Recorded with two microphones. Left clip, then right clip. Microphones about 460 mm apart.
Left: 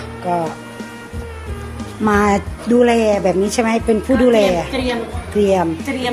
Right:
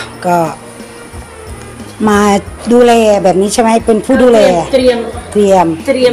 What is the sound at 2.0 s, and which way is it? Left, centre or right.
A woman's voice, left.